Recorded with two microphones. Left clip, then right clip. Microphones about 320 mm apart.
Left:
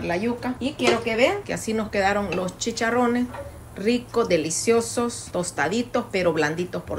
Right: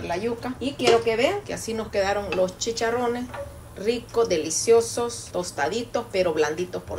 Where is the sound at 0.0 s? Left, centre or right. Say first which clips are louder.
Left 2 dB; left.